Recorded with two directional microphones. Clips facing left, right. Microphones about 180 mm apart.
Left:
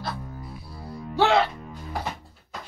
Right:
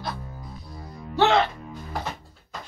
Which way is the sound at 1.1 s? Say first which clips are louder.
Even; 10° left (ahead or behind).